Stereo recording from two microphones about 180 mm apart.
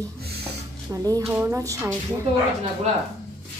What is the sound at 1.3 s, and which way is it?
Speech, 5° right (ahead or behind).